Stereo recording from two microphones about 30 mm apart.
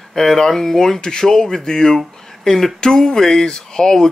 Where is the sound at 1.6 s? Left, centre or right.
Left.